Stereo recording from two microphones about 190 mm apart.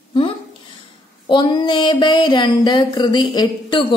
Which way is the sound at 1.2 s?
25° left (ahead or behind).